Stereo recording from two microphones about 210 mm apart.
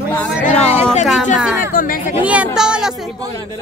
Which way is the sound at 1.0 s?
Centre (ahead or behind).